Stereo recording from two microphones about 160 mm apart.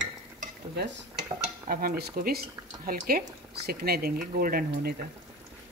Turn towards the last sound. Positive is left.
turn(degrees=-70)  # may be behind; listen again after turning